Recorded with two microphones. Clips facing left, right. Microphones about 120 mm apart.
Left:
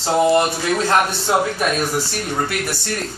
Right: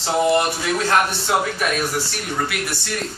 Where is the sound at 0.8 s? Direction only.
20° left (ahead or behind).